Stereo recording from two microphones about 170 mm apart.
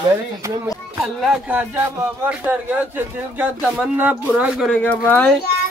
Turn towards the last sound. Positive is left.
turn(degrees=10)  # may be behind; listen again after turning